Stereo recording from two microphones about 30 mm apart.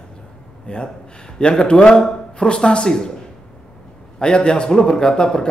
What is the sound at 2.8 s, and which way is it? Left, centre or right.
Speech, centre.